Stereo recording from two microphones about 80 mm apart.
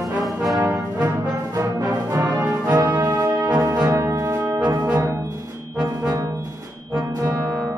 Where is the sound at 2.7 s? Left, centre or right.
Right.